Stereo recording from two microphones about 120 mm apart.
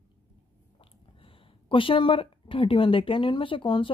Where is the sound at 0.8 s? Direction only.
50° left (ahead or behind).